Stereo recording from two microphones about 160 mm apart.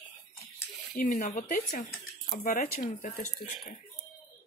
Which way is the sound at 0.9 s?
60° left (ahead or behind).